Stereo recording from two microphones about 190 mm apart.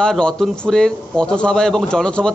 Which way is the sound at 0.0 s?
5° left (ahead or behind).